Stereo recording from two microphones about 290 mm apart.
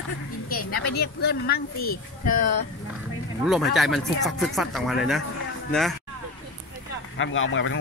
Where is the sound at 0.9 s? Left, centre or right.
Left.